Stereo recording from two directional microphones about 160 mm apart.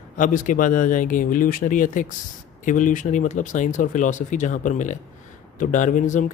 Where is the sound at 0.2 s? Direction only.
55° left (ahead or behind).